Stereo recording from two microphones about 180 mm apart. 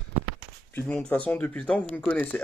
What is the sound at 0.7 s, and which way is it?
Speech, 10° left (ahead or behind).